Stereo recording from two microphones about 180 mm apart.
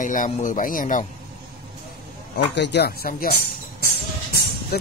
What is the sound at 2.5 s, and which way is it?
Speech, 70° left (ahead or behind).